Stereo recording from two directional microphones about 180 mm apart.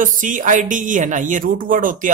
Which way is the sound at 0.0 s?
45° right (ahead or behind).